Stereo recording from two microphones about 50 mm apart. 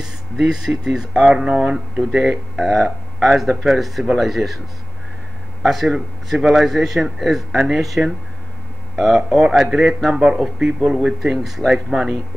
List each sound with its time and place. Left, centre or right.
0.0 s speech: centre
5.6 s speech: centre
6.4 s speech: centre
6.7 s speech: centre
8.9 s speech: centre
9.7 s speech: centre